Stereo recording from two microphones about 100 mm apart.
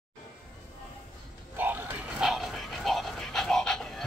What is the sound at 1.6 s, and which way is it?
Music, 20° right (ahead or behind).